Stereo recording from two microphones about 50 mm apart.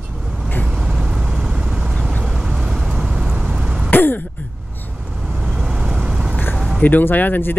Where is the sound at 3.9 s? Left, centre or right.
Left.